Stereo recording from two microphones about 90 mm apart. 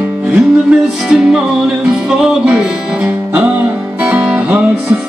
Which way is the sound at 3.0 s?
15° right (ahead or behind).